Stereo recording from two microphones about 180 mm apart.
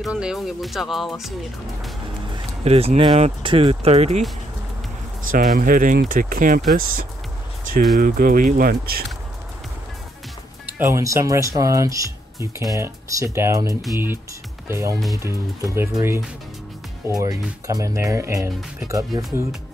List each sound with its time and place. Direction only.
0.0 s speech: 5° right (ahead or behind)
2.3 s speech: 35° right (ahead or behind)
5.3 s speech: 50° right (ahead or behind)
8.0 s speech: 50° right (ahead or behind)
10.8 s speech: 15° right (ahead or behind)